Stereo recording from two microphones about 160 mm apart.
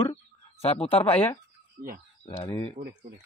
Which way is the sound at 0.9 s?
40° left (ahead or behind).